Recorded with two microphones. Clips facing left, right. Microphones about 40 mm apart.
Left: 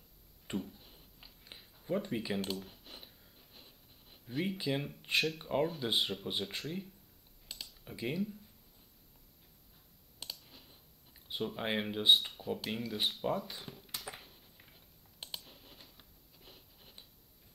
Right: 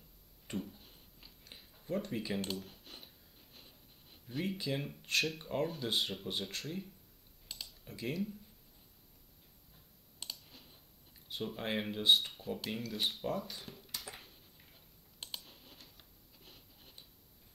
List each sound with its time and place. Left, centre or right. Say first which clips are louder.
0.6 s a sound: left 1 dB; centre
1.4 s a sound: left 2 dB; centre
5.4 s speech: left 3 dB; centre
7.4 s computer keyboard: even; centre
7.8 s speech: left 2 dB; centre
10.2 s clicking: even; centre
11.2 s speech: left 2 dB; centre
13.7 s computer keyboard: left 2 dB; centre